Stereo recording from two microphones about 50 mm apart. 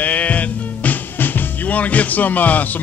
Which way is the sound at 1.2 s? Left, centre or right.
Left.